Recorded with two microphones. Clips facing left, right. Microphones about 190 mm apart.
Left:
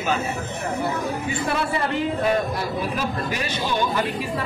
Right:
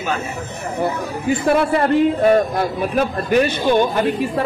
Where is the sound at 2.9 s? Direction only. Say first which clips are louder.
Right 10 dB; 55° right (ahead or behind).